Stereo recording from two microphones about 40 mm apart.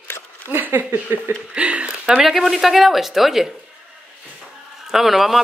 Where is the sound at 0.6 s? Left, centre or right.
Right.